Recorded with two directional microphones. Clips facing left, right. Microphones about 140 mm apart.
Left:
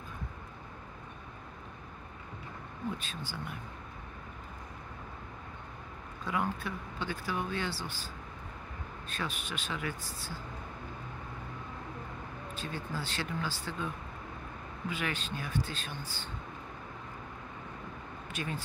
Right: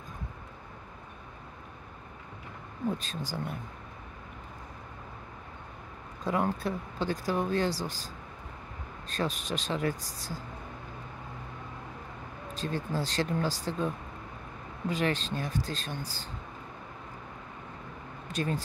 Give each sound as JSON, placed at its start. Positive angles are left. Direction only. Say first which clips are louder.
{"t": 3.0, "sound": "speech", "louder": "right 5 dB", "side_deg": -40}
{"t": 6.2, "sound": "speech", "louder": "right 5 dB", "side_deg": -40}
{"t": 9.1, "sound": "speech", "louder": "right 7 dB", "side_deg": -40}
{"t": 12.5, "sound": "speech", "louder": "right 7 dB", "side_deg": -40}
{"t": 18.3, "sound": "speech", "louder": "right 7 dB", "side_deg": -40}